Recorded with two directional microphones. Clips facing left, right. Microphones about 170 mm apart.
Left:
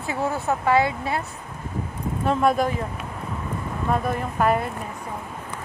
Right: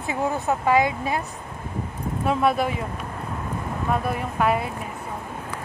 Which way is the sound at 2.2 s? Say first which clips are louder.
Left 1 dB; 5° right (ahead or behind).